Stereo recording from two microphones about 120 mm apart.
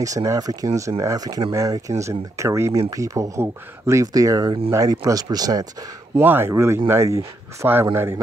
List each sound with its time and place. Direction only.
0.0 s speech: 30° right (ahead or behind)
6.1 s speech: 20° right (ahead or behind)